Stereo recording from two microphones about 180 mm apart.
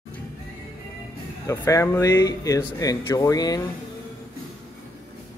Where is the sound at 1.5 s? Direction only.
15° left (ahead or behind).